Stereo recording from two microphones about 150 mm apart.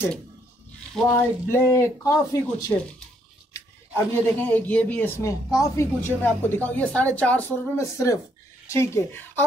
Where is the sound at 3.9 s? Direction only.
10° left (ahead or behind).